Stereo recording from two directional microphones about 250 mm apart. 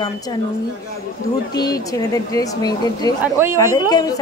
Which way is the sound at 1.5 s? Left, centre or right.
Centre.